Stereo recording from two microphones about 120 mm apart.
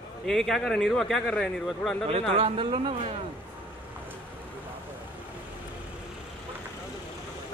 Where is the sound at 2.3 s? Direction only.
45° right (ahead or behind).